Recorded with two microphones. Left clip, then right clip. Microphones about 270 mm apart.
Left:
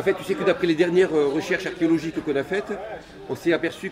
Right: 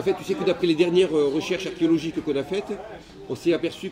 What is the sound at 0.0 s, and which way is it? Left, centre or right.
A man's voice, centre.